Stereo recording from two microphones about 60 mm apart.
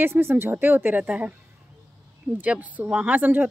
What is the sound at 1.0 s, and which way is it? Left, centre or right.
Speech, right.